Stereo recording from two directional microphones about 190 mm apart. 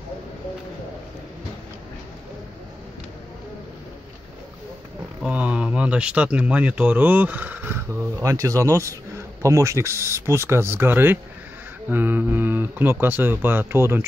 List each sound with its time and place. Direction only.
5.2 s speech: 5° right (ahead or behind)